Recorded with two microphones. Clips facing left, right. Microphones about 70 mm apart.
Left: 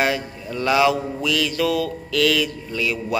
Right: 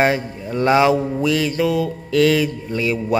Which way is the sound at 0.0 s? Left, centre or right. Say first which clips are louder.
Right 4 dB; right.